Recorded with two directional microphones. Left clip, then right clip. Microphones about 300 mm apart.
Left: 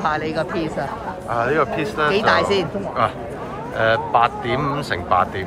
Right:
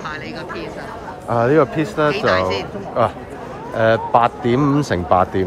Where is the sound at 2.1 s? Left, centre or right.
Centre.